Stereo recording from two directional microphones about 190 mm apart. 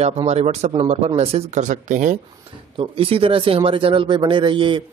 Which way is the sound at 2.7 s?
30° right (ahead or behind).